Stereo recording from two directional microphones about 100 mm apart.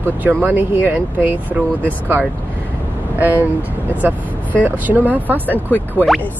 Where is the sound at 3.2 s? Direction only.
15° right (ahead or behind).